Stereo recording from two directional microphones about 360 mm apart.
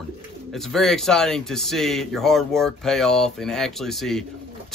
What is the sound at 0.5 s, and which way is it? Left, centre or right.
Speech, centre.